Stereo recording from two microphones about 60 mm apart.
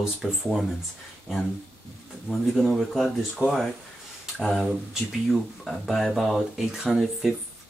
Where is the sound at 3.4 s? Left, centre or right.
Right.